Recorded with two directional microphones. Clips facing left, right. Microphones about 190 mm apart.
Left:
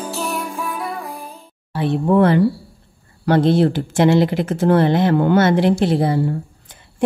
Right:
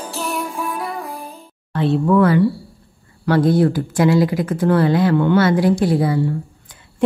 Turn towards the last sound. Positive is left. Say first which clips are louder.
# even
turn(degrees=25)  # may be behind; listen again after turning